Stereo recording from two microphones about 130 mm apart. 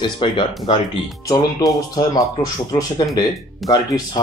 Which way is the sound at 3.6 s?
30° left (ahead or behind).